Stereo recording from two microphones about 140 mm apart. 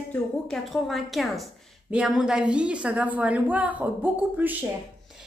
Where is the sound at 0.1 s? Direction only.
Centre (ahead or behind).